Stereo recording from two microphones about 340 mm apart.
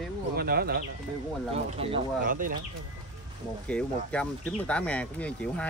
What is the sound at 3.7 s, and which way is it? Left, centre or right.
Speech, centre.